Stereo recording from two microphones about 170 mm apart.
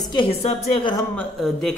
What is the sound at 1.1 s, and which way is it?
Speech, 5° left (ahead or behind).